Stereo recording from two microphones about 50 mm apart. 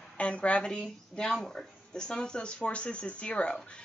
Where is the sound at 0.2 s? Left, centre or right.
Left.